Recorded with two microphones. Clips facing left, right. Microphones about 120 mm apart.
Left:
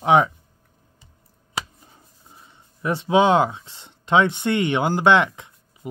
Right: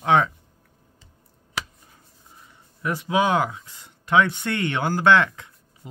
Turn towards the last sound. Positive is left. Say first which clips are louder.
# left 1 dB
turn(degrees=20)  # may be behind; listen again after turning